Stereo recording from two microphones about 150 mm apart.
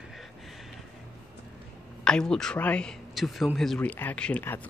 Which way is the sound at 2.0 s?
5° left (ahead or behind).